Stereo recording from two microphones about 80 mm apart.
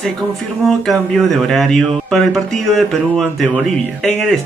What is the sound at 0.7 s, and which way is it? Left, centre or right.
Speech, centre.